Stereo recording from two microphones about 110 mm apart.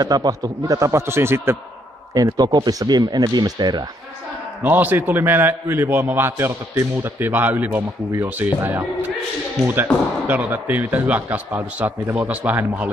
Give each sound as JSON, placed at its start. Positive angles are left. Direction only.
{"t": 0.0, "sound": "a man's voice", "side_deg": -35}
{"t": 2.1, "sound": "speech", "side_deg": -40}
{"t": 4.6, "sound": "a man's voice", "side_deg": -15}